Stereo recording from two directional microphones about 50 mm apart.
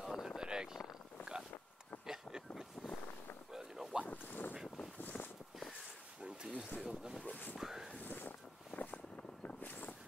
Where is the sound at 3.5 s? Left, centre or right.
Centre.